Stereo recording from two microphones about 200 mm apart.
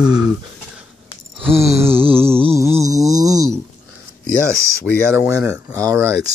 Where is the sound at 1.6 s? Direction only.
10° right (ahead or behind).